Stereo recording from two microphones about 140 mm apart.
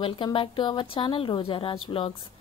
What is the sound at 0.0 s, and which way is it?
A woman's voice, 40° left (ahead or behind).